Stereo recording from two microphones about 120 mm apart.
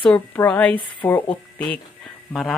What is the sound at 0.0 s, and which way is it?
Speech, 15° left (ahead or behind).